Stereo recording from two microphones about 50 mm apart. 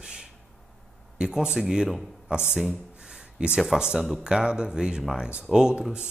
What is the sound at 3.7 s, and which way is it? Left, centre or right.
Speech, centre.